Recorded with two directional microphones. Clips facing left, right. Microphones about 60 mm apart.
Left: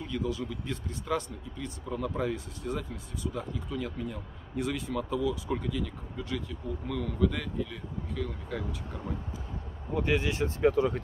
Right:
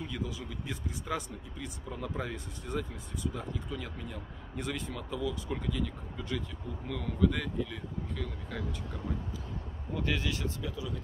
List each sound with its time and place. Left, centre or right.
0.0 s speech: centre
9.9 s speech: left
10.6 s speech: left